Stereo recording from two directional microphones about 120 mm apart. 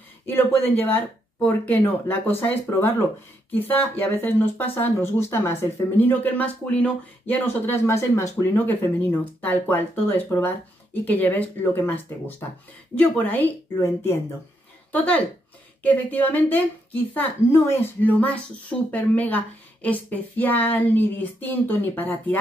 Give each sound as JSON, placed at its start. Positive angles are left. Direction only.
{"t": 0.3, "sound": "speech", "side_deg": 15}